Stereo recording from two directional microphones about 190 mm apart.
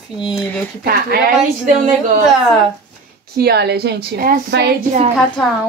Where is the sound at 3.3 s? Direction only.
60° right (ahead or behind).